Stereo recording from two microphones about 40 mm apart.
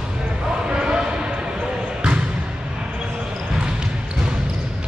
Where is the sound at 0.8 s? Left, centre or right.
Centre.